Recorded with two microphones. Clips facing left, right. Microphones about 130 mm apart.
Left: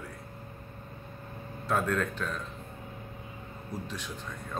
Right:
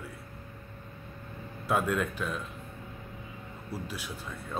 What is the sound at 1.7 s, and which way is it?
Speech, 10° right (ahead or behind).